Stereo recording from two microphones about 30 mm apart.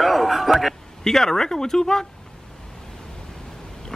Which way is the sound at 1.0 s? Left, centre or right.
Centre.